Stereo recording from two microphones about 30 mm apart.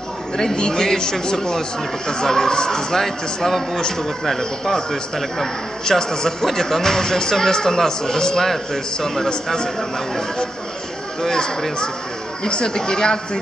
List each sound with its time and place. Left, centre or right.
0.6 s speech: centre
3.0 s a man's voice: centre
8.4 s speech: centre
12.4 s speech: left